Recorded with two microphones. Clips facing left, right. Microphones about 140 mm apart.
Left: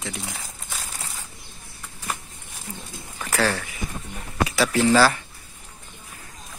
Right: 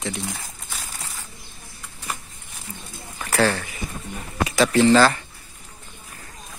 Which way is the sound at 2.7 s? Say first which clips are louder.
Left 1 dB; centre (ahead or behind).